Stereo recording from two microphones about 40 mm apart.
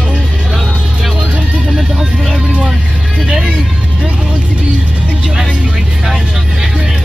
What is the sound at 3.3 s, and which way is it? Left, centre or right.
Music, centre.